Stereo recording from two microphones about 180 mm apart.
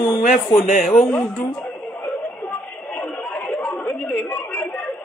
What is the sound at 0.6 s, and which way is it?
Speech, 45° left (ahead or behind).